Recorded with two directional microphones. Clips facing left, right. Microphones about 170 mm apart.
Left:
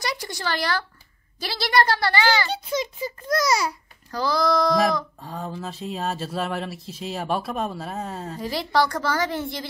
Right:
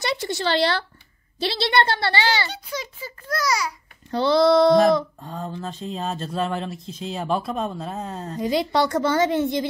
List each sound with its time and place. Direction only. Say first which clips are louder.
0.0 s a woman's voice: right 5 dB; 25° right (ahead or behind)
2.5 s a child's voice: left 6 dB; 20° left (ahead or behind)
4.1 s a woman's voice: right 6 dB; 25° right (ahead or behind)
5.2 s speech: right 1 dB; 5° left (ahead or behind)
8.4 s a woman's voice: right 2 dB; 20° right (ahead or behind)